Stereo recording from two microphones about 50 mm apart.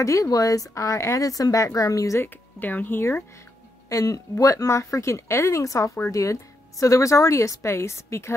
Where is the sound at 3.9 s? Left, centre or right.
Left.